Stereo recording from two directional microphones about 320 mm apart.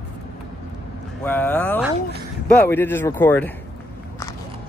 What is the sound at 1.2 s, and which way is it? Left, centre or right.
Speech, centre.